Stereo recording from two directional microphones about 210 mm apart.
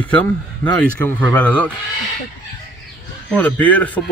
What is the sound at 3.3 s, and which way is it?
Speech, 5° left (ahead or behind).